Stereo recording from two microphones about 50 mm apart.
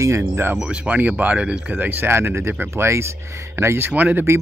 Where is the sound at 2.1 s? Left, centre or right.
Right.